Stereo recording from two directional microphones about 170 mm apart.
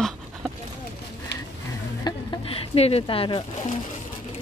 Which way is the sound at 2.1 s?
25° left (ahead or behind).